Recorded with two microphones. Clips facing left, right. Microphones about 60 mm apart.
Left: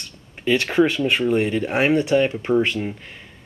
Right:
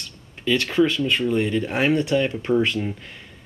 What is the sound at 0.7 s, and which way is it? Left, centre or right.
Speech, left.